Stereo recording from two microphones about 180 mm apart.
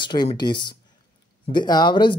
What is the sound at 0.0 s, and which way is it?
Speech, 25° left (ahead or behind).